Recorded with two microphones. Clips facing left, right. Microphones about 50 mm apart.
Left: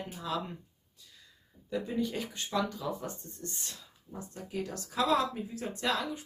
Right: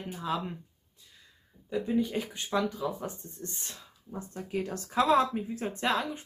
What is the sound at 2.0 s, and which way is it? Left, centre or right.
Speech, centre.